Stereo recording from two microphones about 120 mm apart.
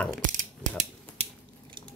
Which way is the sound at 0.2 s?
90° right.